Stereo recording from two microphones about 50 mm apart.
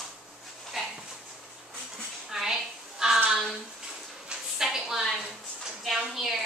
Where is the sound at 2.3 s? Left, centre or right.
Centre.